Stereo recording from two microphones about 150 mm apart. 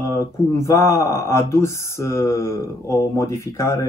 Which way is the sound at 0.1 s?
20° left (ahead or behind).